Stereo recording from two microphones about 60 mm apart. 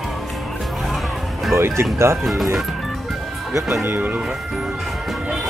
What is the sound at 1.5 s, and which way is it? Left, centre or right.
Speech, right.